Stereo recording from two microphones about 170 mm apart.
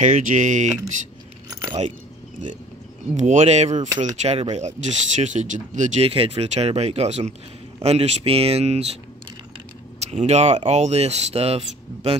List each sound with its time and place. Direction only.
0.0 s speech: 50° right (ahead or behind)
3.2 s speech: 45° right (ahead or behind)
9.9 s speech: 40° right (ahead or behind)